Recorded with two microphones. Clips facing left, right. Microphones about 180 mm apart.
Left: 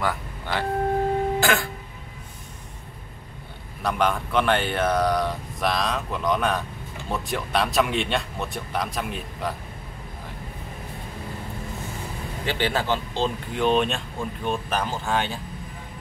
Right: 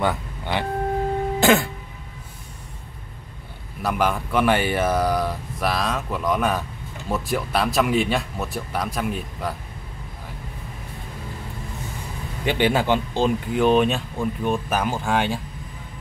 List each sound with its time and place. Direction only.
0.0 s speech: 20° right (ahead or behind)
1.4 s music: 20° right (ahead or behind)
3.8 s speech: 5° right (ahead or behind)
12.4 s speech: 15° right (ahead or behind)